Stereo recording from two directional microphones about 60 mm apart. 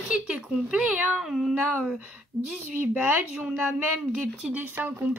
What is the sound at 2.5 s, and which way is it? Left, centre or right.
A woman's voice, right.